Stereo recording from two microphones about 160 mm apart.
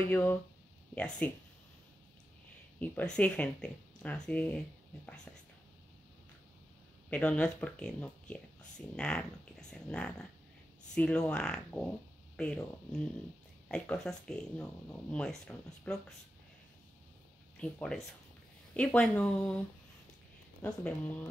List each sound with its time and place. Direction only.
0.1 s speech: 10° left (ahead or behind)
2.8 s speech: 10° left (ahead or behind)
7.1 s speech: 5° left (ahead or behind)
13.7 s speech: 5° left (ahead or behind)
17.6 s speech: 5° left (ahead or behind)
20.6 s speech: 10° left (ahead or behind)